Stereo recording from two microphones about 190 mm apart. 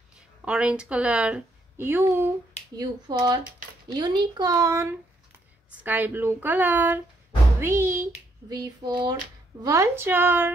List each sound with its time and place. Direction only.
0.5 s a woman's voice: 5° right (ahead or behind)